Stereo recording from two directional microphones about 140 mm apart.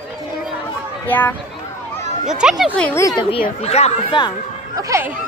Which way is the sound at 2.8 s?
15° left (ahead or behind).